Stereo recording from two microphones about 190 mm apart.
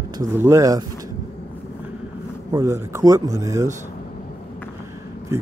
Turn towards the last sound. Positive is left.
turn(degrees=-15)  # may be behind; listen again after turning